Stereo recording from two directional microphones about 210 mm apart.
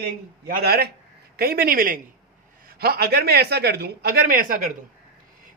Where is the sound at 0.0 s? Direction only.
45° right (ahead or behind).